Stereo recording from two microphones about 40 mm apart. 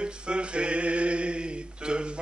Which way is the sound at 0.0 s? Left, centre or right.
Right.